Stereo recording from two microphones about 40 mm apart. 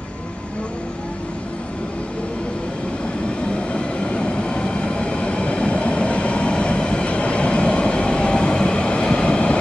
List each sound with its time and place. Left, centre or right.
3.7 s train: left